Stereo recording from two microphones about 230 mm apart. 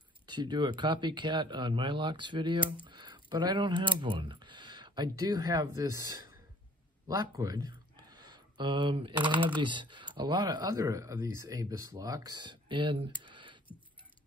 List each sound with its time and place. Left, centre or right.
0.3 s speech: centre